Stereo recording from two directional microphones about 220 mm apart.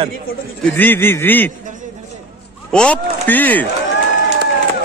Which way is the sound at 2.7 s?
5° left (ahead or behind).